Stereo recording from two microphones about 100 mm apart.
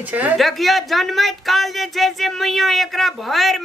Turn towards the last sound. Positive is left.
turn(degrees=0)  # may be behind; listen again after turning